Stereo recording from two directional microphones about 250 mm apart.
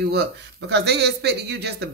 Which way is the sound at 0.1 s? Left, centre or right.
Right.